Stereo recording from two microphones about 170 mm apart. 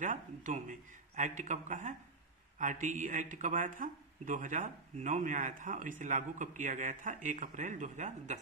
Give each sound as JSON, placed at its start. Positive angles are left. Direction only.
{"t": 0.0, "sound": "speech", "side_deg": -50}